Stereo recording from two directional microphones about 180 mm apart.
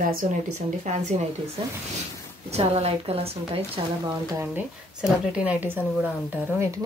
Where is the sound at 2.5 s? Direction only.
35° right (ahead or behind).